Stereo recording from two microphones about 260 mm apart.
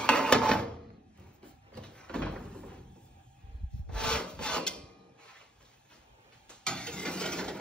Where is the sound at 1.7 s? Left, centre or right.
Centre.